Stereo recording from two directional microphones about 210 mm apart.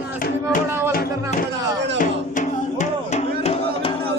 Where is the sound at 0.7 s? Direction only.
10° right (ahead or behind).